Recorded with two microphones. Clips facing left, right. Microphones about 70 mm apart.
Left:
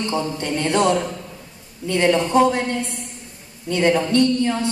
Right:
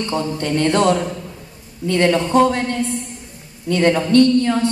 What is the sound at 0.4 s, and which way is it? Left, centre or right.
Speech, centre.